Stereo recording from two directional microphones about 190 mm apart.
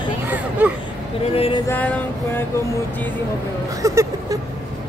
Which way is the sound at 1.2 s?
30° left (ahead or behind).